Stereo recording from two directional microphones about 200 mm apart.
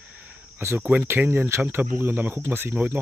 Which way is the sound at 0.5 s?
10° right (ahead or behind).